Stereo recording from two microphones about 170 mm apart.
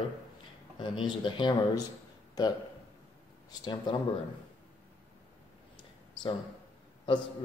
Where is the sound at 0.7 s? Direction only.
25° left (ahead or behind).